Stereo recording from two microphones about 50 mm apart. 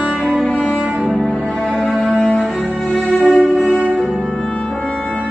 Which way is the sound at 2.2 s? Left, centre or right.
Left.